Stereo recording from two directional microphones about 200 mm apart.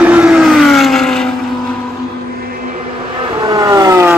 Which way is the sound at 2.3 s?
45° right (ahead or behind).